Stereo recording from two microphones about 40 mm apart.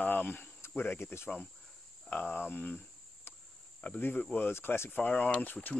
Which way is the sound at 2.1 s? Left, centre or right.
Left.